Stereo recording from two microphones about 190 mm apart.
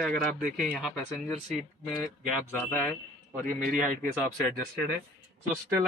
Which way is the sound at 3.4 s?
45° right (ahead or behind).